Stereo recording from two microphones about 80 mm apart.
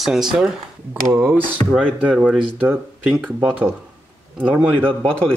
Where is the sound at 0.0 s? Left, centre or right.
Centre.